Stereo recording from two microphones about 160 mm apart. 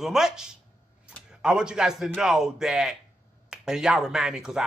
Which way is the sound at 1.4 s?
5° right (ahead or behind).